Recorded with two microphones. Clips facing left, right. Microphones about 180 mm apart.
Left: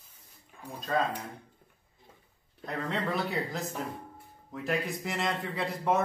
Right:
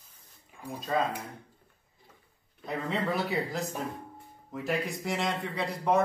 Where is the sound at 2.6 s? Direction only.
5° right (ahead or behind).